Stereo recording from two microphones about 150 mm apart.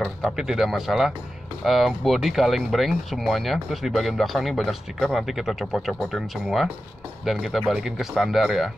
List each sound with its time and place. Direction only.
0.2 s speech: centre (ahead or behind)